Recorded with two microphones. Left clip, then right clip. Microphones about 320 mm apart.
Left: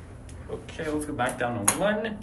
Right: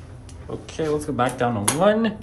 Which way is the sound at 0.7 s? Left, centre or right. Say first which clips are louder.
Right 7 dB; right.